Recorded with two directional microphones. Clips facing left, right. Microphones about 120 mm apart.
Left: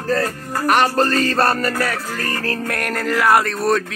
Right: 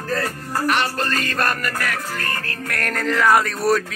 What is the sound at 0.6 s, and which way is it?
Music, 45° left (ahead or behind).